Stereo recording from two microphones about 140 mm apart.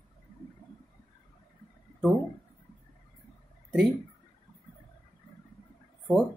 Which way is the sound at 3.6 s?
5° right (ahead or behind).